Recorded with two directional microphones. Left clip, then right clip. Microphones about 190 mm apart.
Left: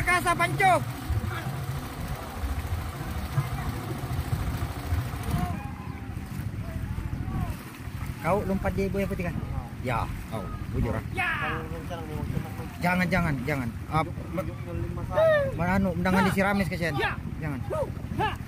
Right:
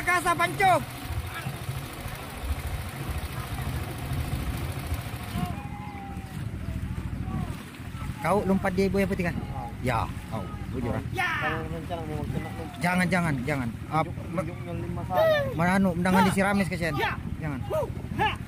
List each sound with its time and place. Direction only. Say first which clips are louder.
0.0 s speech: even; 5° right (ahead or behind)
8.2 s speech: right 2 dB; 20° right (ahead or behind)
11.1 s speech: right 1 dB; 15° right (ahead or behind)
12.8 s speech: even; 10° right (ahead or behind)
15.1 s speech: left 1 dB; 15° right (ahead or behind)